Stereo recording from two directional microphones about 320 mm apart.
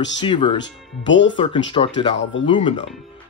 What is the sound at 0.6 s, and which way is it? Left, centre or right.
Speech, left.